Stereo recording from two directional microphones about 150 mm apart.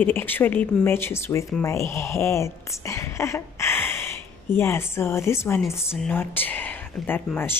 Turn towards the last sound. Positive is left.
turn(degrees=5)  # may be behind; listen again after turning